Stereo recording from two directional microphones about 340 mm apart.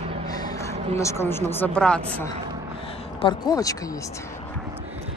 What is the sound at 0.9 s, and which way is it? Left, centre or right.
Speech, centre.